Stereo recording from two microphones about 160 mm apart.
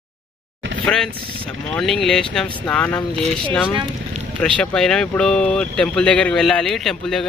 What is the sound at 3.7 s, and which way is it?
Speech, 35° right (ahead or behind).